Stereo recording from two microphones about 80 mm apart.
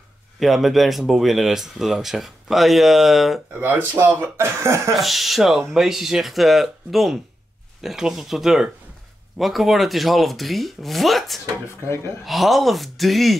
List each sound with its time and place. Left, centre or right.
0.4 s speech: centre
3.6 s speech: right
4.9 s speech: centre